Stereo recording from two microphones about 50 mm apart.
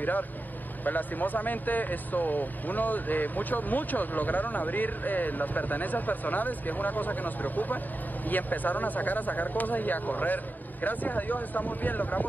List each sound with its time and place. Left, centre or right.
0.0 s speech: left